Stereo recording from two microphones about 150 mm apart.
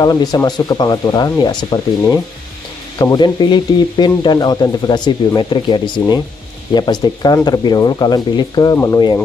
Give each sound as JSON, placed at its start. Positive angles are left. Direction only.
{"t": 0.0, "sound": "speech", "side_deg": 25}
{"t": 3.0, "sound": "speech", "side_deg": 25}